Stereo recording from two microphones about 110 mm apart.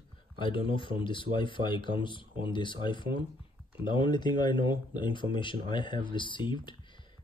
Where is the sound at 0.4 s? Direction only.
50° left (ahead or behind).